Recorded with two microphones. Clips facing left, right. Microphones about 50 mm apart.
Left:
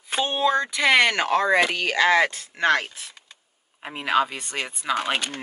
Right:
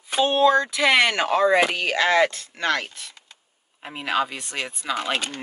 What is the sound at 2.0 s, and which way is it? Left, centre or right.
Speech, centre.